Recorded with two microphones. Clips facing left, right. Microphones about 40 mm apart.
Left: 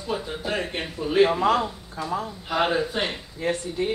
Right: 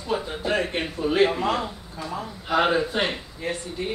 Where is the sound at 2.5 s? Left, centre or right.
Centre.